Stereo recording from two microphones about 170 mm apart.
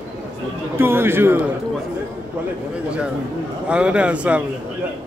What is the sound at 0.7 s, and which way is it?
Speech, 15° right (ahead or behind).